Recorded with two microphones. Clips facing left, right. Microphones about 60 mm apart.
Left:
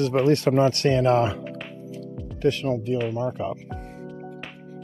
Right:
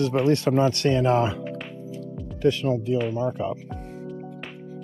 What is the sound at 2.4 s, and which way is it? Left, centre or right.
Speech, left.